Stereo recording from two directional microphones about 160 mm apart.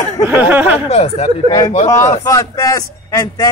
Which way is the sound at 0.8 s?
40° left (ahead or behind).